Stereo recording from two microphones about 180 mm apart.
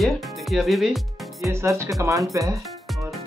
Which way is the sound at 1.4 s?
15° right (ahead or behind).